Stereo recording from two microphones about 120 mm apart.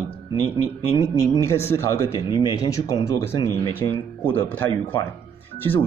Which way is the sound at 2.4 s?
30° left (ahead or behind).